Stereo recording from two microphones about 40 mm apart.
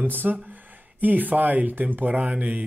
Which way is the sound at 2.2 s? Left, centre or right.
Right.